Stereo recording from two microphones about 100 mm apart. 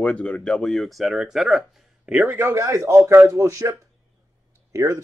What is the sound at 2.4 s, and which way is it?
Speech, 30° right (ahead or behind).